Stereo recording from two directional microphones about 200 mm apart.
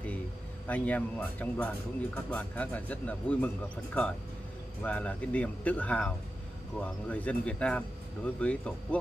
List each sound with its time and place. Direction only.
0.7 s speech: 10° left (ahead or behind)